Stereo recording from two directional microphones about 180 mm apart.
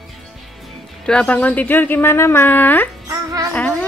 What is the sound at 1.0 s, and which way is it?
A woman's voice, 5° left (ahead or behind).